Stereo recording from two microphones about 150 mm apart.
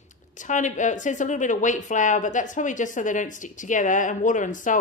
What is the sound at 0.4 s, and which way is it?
Speech, 55° left (ahead or behind).